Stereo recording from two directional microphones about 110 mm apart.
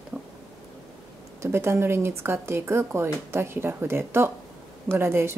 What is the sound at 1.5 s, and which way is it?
Speech, 20° right (ahead or behind).